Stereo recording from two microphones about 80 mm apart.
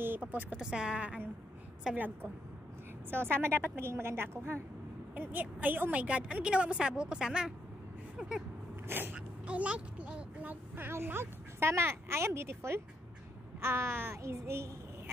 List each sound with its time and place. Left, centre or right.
0.0 s a sound: right
0.6 s a woman's voice: centre
3.1 s a woman's voice: right; by 8.5 s centre
8.8 s speech: right
13.6 s child singing: right